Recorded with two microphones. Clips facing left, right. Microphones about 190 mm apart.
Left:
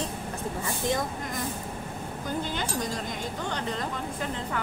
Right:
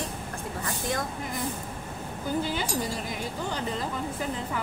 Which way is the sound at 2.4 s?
10° right (ahead or behind).